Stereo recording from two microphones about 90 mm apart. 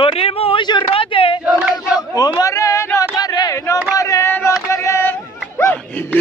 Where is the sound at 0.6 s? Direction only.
70° left (ahead or behind).